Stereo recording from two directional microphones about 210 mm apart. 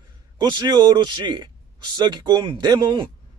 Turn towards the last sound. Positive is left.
turn(degrees=-20)  # may be behind; listen again after turning